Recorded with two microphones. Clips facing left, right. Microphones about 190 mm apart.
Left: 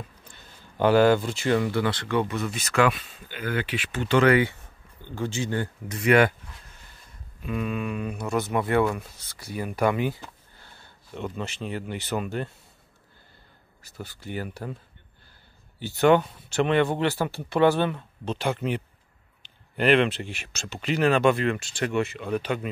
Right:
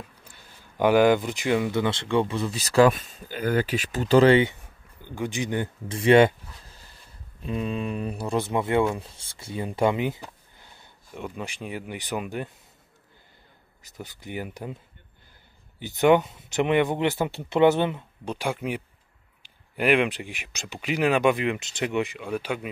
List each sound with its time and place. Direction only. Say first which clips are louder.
0.3 s speech: left 1 dB; 15° right (ahead or behind)
5.0 s speech: even; 15° right (ahead or behind)
13.8 s speech: left 1 dB; 15° right (ahead or behind)
15.8 s speech: even; 15° right (ahead or behind)